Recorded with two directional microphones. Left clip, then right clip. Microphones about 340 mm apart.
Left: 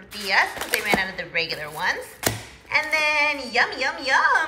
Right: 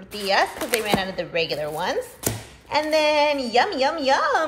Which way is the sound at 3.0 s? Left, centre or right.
Right.